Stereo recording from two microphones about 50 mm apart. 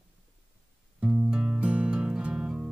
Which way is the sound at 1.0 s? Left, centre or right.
Centre.